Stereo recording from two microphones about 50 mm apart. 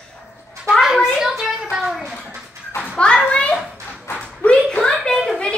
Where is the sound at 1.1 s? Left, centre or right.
Centre.